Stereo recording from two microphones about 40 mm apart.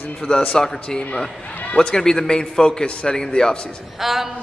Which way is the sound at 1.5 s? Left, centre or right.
Left.